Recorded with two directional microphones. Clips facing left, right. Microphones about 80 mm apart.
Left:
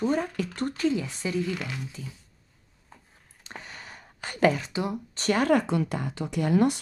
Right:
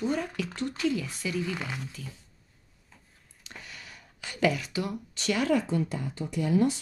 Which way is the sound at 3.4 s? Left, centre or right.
Left.